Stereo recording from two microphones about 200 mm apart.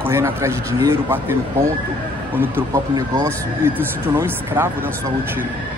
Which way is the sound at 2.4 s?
15° right (ahead or behind).